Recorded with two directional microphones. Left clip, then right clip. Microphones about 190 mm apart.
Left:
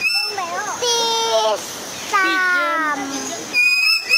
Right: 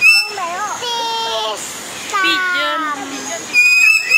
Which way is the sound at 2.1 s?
35° left (ahead or behind).